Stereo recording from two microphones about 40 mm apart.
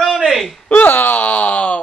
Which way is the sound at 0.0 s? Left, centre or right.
Centre.